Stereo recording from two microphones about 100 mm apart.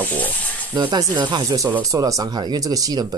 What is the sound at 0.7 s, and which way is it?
Speech, 45° right (ahead or behind).